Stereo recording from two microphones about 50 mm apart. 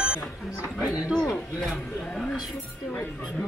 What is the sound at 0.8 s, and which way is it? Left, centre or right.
Speech, right.